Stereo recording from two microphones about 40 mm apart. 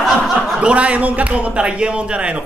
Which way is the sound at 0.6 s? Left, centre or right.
Right.